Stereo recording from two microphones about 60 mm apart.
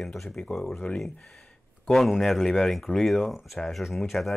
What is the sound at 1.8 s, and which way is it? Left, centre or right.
Speech, centre.